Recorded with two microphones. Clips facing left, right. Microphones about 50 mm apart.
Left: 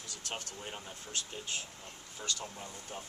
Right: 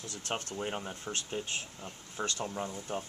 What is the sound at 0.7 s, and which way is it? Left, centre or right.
Speech, right.